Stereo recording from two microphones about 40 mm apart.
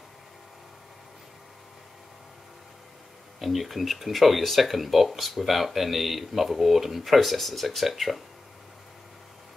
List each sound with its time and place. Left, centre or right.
3.3 s speech: centre